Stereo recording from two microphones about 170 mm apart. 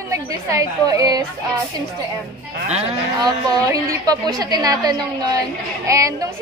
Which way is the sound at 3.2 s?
20° right (ahead or behind).